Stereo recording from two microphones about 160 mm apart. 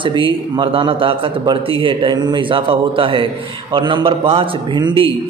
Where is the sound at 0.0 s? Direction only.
30° right (ahead or behind).